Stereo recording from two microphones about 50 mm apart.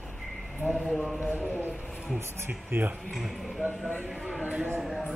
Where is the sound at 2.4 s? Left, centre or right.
Right.